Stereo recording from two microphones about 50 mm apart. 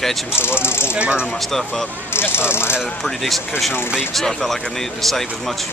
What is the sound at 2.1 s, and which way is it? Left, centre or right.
Speech, left.